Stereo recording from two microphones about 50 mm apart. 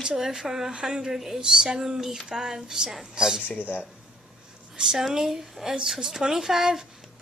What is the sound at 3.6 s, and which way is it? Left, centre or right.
Speech, right.